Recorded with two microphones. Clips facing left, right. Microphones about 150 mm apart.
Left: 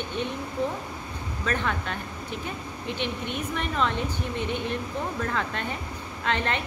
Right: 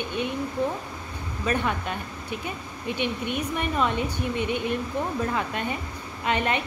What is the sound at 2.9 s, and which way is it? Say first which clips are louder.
Speech: right 3 dB; 15° right (ahead or behind).